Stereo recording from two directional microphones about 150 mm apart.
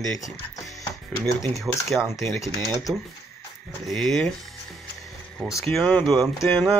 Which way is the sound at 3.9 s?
Centre (ahead or behind).